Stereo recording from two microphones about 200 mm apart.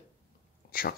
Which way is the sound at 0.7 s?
50° left (ahead or behind).